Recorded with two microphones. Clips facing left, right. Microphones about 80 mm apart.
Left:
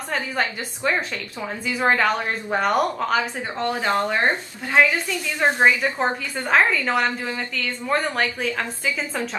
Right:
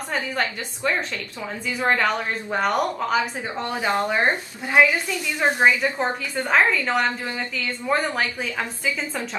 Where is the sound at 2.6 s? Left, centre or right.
Centre.